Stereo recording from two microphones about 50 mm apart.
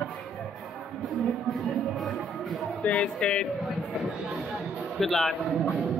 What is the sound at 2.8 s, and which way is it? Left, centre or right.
Speech, left.